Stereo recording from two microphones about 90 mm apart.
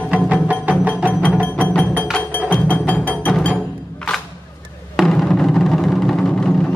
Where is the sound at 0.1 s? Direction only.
15° right (ahead or behind).